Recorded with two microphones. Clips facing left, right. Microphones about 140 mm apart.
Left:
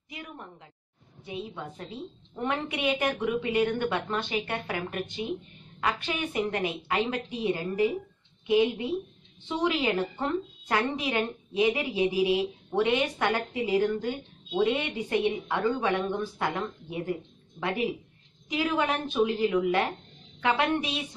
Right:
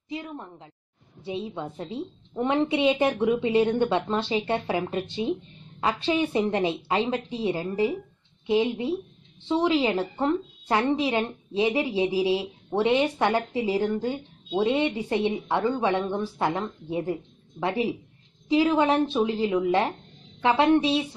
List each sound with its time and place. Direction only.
0.1 s speech: 25° right (ahead or behind)